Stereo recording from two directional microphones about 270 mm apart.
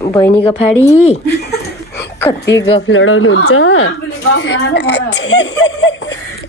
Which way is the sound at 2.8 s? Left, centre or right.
Left.